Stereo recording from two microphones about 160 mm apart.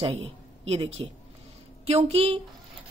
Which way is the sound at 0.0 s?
40° right (ahead or behind).